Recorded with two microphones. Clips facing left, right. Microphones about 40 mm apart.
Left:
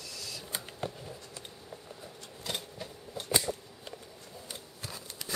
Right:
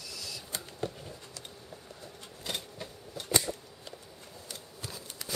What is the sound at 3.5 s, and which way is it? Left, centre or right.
Scissors, left.